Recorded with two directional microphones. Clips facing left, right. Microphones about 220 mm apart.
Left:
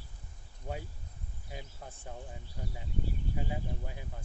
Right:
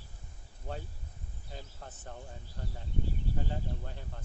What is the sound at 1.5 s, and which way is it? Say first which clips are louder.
Speech: left 1 dB; 10° left (ahead or behind).